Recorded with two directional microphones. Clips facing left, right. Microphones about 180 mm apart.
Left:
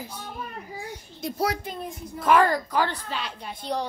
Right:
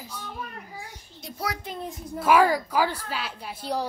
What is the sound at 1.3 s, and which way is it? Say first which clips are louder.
Speech: left 5 dB; 30° left (ahead or behind).